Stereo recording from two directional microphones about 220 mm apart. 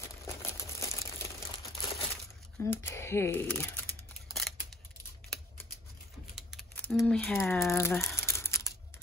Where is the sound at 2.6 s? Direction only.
10° left (ahead or behind).